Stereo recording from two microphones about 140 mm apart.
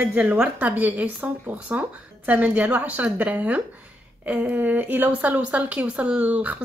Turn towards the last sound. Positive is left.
turn(degrees=-10)  # may be behind; listen again after turning